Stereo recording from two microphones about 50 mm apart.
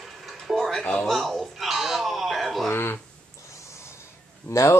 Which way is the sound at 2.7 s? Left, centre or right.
Left.